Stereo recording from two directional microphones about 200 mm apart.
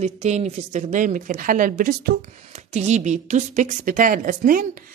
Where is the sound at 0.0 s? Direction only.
35° right (ahead or behind).